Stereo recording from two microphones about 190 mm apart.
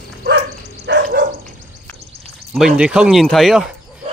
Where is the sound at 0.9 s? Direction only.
65° right (ahead or behind).